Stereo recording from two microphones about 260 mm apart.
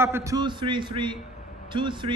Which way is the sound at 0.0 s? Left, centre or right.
Centre.